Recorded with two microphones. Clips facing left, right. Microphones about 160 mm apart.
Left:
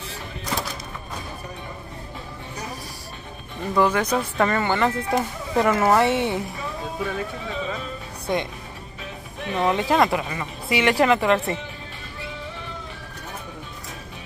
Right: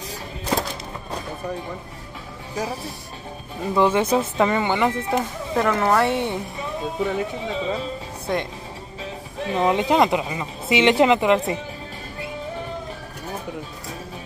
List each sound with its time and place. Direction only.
0.1 s music: 35° right (ahead or behind)
3.7 s speech: 25° right (ahead or behind)
4.4 s speech: 15° right (ahead or behind)
5.1 s speech: 5° left (ahead or behind)
7.0 s speech: 20° right (ahead or behind)
9.4 s speech: 25° right (ahead or behind)